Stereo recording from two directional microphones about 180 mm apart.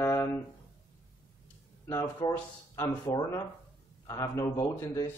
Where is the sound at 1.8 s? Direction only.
15° left (ahead or behind).